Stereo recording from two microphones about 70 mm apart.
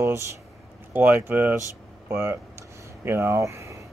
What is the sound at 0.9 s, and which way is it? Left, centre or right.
Speech, right.